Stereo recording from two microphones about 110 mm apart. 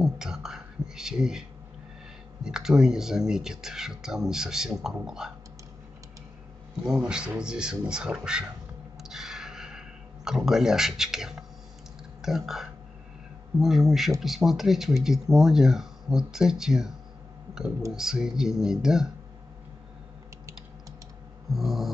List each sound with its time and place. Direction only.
0.0 s speech: 5° right (ahead or behind)
2.4 s speech: 5° right (ahead or behind)
6.8 s speech: 5° right (ahead or behind)
9.1 s gasp: 5° right (ahead or behind)
12.2 s speech: 5° right (ahead or behind)
17.9 s speech: 5° right (ahead or behind)
21.5 s speech: centre (ahead or behind)